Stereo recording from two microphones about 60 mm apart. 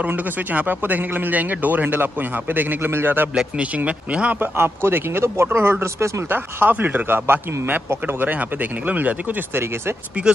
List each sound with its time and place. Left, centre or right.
0.0 s speech: right
3.3 s speech: centre
4.4 s speech: right
6.3 s speech: right